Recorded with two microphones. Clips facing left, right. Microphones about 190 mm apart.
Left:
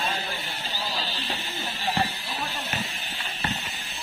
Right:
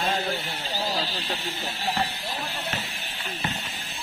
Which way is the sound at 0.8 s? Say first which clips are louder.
Right 5 dB; 40° right (ahead or behind).